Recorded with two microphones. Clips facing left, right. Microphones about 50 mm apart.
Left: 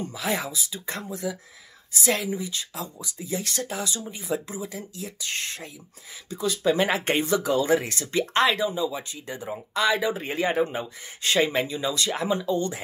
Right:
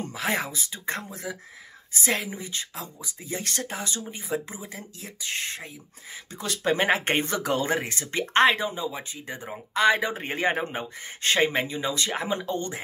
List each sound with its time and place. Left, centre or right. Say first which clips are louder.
0.0 s speech: even; right
2.0 s speech: left 3 dB; right
5.2 s speech: right 2 dB; centre
6.6 s speech: right 1 dB; right
12.4 s speech: left 4 dB; right